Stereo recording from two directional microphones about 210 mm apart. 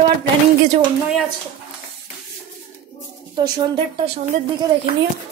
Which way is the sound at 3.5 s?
25° right (ahead or behind).